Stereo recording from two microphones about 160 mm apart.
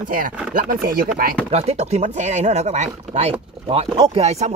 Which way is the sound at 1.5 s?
40° right (ahead or behind).